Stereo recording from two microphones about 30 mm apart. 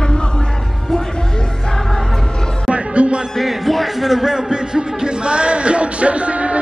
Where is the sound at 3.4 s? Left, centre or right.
Centre.